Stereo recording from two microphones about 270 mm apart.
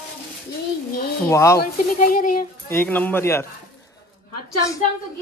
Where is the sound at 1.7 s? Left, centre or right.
Left.